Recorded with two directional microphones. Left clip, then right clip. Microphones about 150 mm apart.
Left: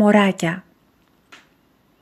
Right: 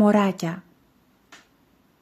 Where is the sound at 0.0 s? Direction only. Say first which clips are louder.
Left 4 dB; 15° left (ahead or behind).